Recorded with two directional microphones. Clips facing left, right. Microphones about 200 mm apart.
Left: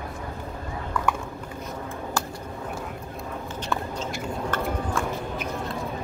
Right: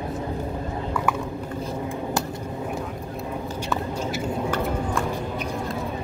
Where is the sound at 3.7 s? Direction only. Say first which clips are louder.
Right 2 dB; 5° right (ahead or behind).